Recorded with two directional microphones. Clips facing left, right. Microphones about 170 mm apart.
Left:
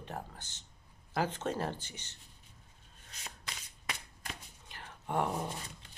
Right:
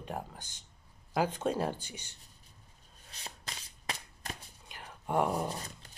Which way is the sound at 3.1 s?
35° right (ahead or behind).